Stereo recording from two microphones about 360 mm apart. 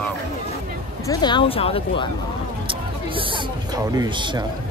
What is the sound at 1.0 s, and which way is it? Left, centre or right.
Speech, centre.